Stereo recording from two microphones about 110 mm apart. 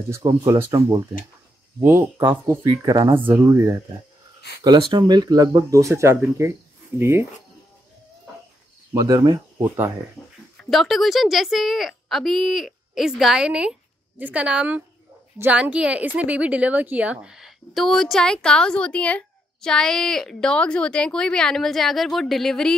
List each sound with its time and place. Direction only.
0.1 s speech: 35° right (ahead or behind)
1.8 s speech: 25° right (ahead or behind)
2.8 s speech: 30° right (ahead or behind)
3.2 s speech: 15° right (ahead or behind)
3.4 s speech: 35° right (ahead or behind)
4.6 s speech: 45° right (ahead or behind); by 7.2 s 25° right (ahead or behind)
9.0 s speech: 35° right (ahead or behind)
9.6 s speech: 20° right (ahead or behind)
10.7 s a woman's voice: centre (ahead or behind)